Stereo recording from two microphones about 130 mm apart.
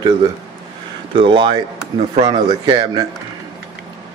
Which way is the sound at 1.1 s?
40° right (ahead or behind).